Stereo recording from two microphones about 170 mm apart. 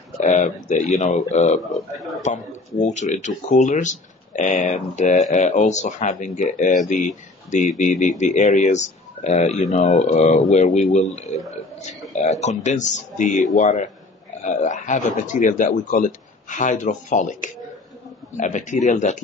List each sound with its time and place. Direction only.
0.2 s speech: 45° left (ahead or behind)
1.7 s a man's voice: centre (ahead or behind)
2.2 s speech: 45° left (ahead or behind)
11.2 s a man's voice: centre (ahead or behind)
11.8 s speech: 40° left (ahead or behind)